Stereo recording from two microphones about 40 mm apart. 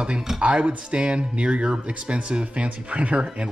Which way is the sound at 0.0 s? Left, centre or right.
Right.